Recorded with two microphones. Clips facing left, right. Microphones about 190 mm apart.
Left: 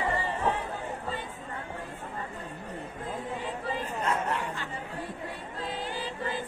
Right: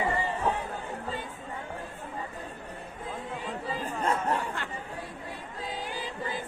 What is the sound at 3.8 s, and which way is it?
Chatter, 30° right (ahead or behind).